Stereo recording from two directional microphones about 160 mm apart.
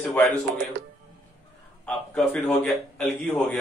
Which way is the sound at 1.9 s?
10° left (ahead or behind).